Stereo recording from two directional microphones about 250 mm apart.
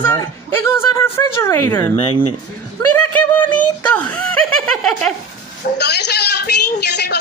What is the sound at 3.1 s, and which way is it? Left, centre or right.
Speech, centre.